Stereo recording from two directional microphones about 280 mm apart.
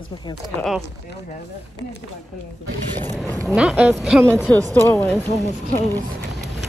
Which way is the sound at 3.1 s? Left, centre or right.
Centre.